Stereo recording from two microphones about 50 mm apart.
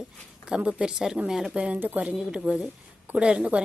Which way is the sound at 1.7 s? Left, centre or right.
Right.